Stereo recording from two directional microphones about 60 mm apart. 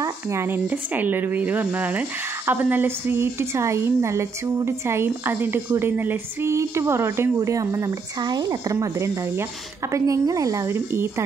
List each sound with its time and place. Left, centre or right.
0.0 s a sound: right
0.5 s speech: right
6.5 s a woman's voice: right
7.3 s speech: right
8.7 s a woman's voice: right
10.7 s a woman's voice: right